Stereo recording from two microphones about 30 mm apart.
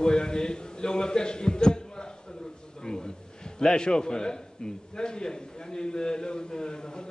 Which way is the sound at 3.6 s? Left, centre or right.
Left.